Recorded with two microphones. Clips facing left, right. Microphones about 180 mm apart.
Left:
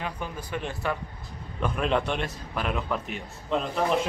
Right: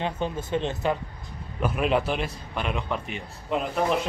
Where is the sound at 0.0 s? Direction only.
25° right (ahead or behind).